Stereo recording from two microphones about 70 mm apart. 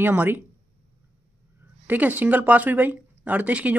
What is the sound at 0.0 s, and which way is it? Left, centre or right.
Speech, right.